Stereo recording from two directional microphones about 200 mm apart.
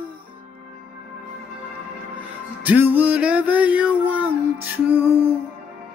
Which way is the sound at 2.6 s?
10° right (ahead or behind).